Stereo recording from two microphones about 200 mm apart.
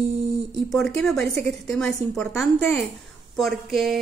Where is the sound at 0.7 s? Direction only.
Centre (ahead or behind).